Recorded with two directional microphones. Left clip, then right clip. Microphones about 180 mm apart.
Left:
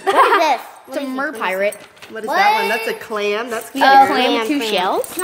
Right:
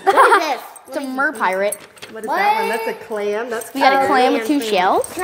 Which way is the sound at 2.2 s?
40° left (ahead or behind).